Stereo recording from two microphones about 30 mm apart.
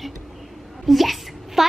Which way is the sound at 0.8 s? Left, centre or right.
Centre.